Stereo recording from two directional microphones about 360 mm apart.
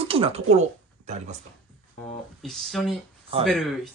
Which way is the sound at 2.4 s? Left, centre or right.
Centre.